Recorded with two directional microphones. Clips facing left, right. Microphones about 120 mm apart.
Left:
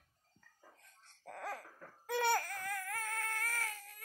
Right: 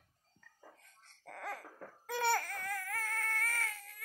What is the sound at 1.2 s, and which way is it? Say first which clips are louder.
Laughter: even; 10° left (ahead or behind).